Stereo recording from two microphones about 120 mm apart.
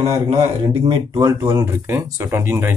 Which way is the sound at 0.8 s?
35° right (ahead or behind).